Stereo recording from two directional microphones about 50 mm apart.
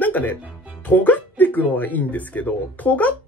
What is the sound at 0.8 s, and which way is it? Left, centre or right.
Speech, left.